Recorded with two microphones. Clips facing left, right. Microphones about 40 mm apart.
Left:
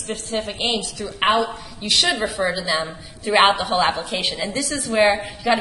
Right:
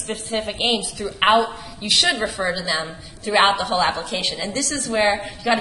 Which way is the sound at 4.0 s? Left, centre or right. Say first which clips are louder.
Left 1 dB; centre.